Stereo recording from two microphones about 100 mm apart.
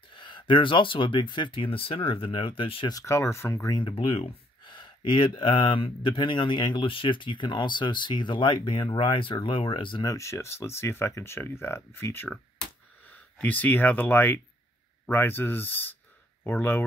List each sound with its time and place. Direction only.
0.1 s speech: 55° left (ahead or behind)
2.9 s speech: 30° left (ahead or behind)
3.7 s speech: 60° left (ahead or behind)
10.0 s speech: 30° left (ahead or behind)
13.4 s speech: 15° left (ahead or behind)